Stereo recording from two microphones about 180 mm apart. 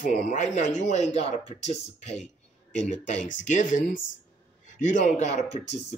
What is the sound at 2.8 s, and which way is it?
Speech, 40° left (ahead or behind).